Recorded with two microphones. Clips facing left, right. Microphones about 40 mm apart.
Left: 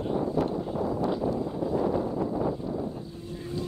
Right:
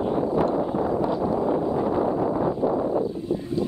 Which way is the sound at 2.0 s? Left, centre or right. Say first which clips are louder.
Right 6 dB; right.